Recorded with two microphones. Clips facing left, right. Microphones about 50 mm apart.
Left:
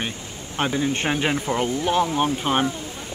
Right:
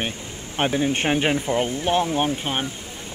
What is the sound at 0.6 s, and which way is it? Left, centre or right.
Speech, right.